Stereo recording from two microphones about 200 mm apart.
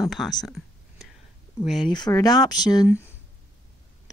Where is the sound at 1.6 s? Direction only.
Centre (ahead or behind).